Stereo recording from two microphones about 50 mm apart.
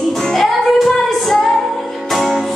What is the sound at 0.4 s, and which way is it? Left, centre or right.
Music, centre.